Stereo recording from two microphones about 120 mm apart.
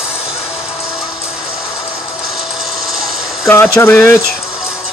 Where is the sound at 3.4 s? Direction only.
20° left (ahead or behind).